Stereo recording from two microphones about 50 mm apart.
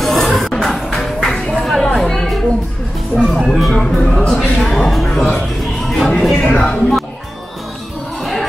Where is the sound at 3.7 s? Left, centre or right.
Centre.